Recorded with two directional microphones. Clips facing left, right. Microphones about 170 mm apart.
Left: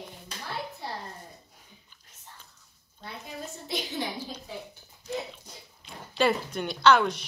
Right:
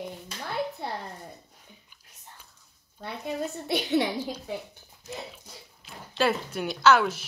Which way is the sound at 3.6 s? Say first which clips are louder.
Right 9 dB; 65° right (ahead or behind).